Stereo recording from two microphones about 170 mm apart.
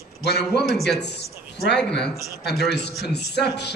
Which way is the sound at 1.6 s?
80° left.